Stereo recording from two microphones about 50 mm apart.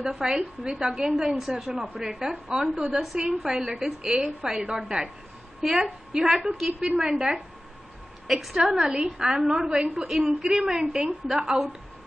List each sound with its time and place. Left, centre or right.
0.0 s a woman's voice: centre
2.9 s a woman's voice: centre
3.2 s a woman's voice: centre